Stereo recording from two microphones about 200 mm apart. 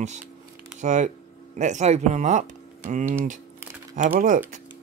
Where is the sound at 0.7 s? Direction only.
40° right (ahead or behind).